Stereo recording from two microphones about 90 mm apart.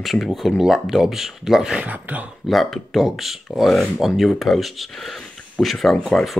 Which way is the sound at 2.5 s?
Centre (ahead or behind).